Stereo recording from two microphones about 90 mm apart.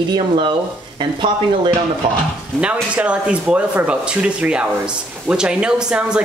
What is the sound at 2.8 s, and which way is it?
Speech, 15° right (ahead or behind).